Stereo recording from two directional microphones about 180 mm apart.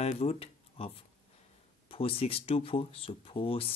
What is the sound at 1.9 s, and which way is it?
Speech, 30° left (ahead or behind).